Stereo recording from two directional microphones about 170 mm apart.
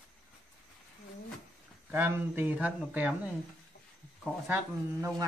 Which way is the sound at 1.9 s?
10° right (ahead or behind).